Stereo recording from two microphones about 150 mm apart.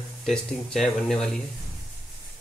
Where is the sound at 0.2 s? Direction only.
5° left (ahead or behind).